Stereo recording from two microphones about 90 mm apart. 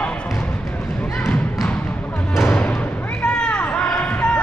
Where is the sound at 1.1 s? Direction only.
5° left (ahead or behind).